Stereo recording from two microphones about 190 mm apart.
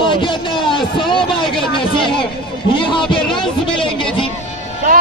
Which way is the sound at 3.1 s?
25° left (ahead or behind).